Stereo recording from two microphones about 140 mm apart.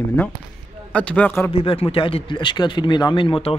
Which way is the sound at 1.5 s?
40° left (ahead or behind).